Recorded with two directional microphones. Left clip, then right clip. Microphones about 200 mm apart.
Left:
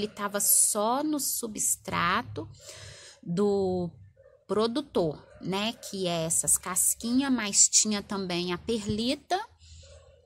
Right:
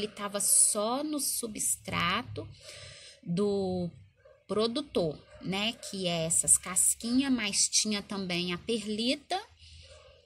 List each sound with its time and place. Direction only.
0.0 s a woman's voice: 20° left (ahead or behind)